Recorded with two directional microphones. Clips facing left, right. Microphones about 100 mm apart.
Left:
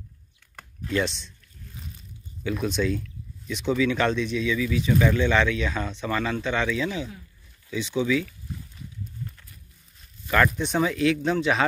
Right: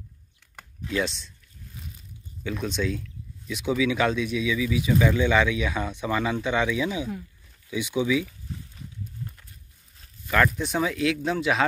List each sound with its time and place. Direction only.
0.6 s computer keyboard: centre (ahead or behind)
2.4 s speech: centre (ahead or behind)
10.2 s speech: centre (ahead or behind)